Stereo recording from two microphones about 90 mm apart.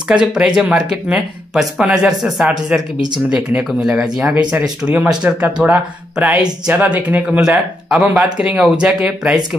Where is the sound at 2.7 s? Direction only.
20° right (ahead or behind).